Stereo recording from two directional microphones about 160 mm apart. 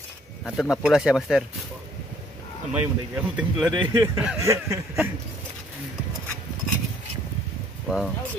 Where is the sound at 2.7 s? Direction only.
10° right (ahead or behind).